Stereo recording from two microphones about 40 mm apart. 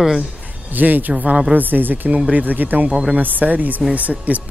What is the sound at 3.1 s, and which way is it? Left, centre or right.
Speech, right.